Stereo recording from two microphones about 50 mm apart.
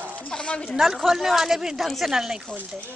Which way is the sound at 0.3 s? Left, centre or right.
Centre.